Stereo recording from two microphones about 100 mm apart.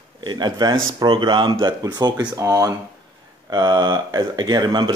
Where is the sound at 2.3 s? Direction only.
30° right (ahead or behind).